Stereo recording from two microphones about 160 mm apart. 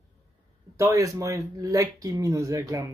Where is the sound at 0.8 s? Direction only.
20° right (ahead or behind).